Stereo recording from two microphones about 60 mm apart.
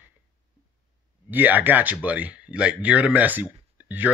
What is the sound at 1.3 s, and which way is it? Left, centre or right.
Speech, right.